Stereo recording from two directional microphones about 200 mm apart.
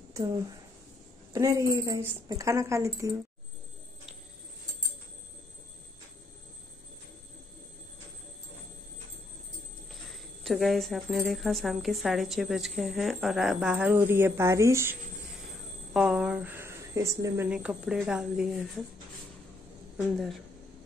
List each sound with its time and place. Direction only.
0.2 s a woman's voice: 15° right (ahead or behind)
10.1 s speech: centre (ahead or behind)
15.9 s a sound: 5° right (ahead or behind)
17.5 s speech: 5° right (ahead or behind)